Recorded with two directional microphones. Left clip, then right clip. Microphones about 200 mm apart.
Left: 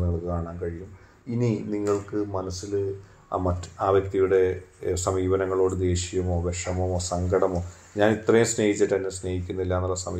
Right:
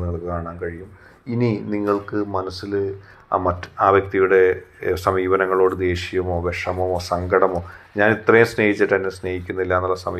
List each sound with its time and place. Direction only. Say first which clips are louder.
0.0 s a sound: right 4 dB; 20° right (ahead or behind)
1.3 s speech: right 5 dB; 20° right (ahead or behind)
6.2 s speech: right 7 dB; 25° right (ahead or behind); by 10.0 s 10° right (ahead or behind)